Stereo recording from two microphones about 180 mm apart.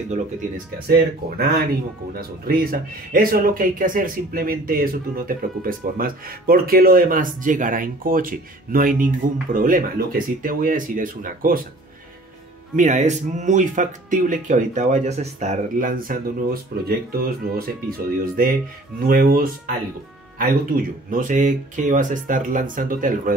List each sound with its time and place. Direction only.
0.8 s speech: 60° right (ahead or behind)
12.7 s speech: 40° right (ahead or behind)